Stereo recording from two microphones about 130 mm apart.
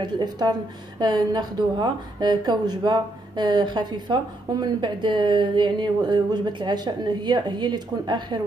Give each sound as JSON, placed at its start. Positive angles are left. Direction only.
{"t": 0.0, "sound": "a woman's voice", "side_deg": -30}